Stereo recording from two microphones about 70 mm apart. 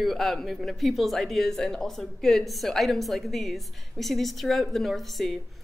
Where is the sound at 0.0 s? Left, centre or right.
Centre.